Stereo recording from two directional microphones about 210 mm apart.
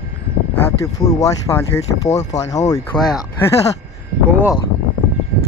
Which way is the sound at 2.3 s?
35° left (ahead or behind).